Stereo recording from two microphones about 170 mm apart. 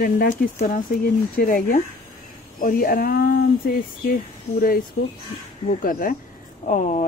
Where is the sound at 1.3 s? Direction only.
55° left (ahead or behind).